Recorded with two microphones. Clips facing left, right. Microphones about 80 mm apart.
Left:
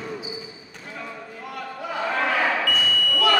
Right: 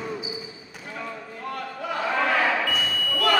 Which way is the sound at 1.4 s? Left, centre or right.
Centre.